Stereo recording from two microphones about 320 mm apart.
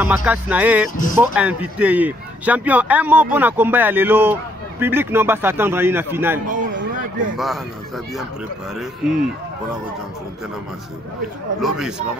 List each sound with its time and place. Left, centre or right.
0.0 s speech: centre
0.8 s speech: left
1.1 s speech: centre
6.5 s a sound: right
7.3 s speech: centre
8.7 s speech: centre